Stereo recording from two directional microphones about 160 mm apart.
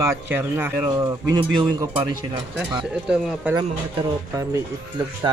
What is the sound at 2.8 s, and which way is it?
Speech, 5° right (ahead or behind).